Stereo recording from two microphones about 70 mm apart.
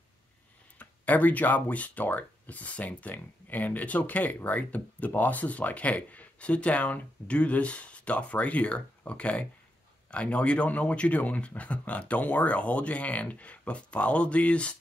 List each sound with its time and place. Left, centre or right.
0.7 s speech: left